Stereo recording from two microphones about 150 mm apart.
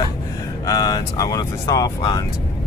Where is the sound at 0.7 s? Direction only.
25° left (ahead or behind).